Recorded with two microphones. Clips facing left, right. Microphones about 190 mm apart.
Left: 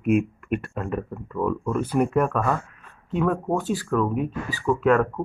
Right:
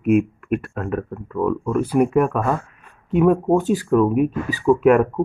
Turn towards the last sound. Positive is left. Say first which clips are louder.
# right 5 dB
turn(degrees=-15)  # may be behind; listen again after turning